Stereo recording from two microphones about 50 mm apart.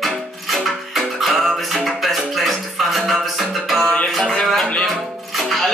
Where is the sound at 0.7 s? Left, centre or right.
Centre.